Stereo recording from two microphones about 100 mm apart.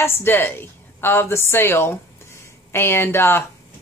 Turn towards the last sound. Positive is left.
turn(degrees=25)  # may be behind; listen again after turning